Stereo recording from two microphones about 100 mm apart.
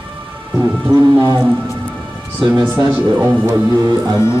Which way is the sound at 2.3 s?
55° right (ahead or behind).